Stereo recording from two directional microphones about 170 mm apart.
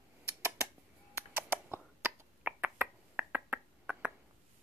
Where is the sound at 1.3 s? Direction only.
10° right (ahead or behind).